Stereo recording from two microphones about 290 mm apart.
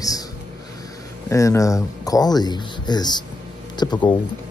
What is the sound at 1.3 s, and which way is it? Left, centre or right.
Speech, centre.